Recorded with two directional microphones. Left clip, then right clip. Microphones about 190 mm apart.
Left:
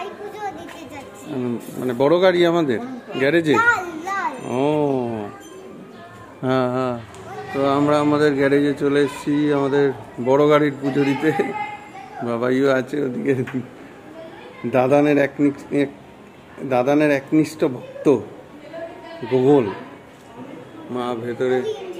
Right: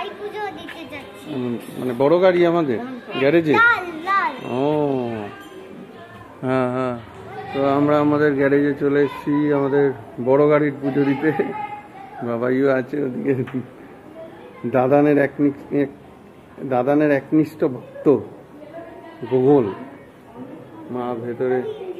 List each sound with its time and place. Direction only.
1.8 s speech: 10° left (ahead or behind)
4.0 s a sound: centre (ahead or behind)
4.6 s a sound: 10° left (ahead or behind)
6.4 s speech: 20° left (ahead or behind)
7.5 s speech: 5° left (ahead or behind)
14.7 s a man's voice: 5° left (ahead or behind)
19.3 s speech: 5° left (ahead or behind)
20.9 s speech: 10° left (ahead or behind)